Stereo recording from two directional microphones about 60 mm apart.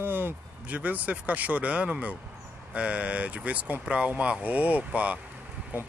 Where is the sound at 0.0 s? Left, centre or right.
Right.